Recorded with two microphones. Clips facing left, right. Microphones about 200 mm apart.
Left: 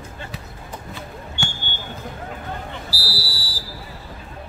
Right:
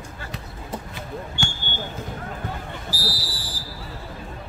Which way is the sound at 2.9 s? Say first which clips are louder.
Right 1 dB; 10° left (ahead or behind).